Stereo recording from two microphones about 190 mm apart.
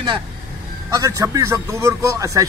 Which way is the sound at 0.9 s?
20° right (ahead or behind).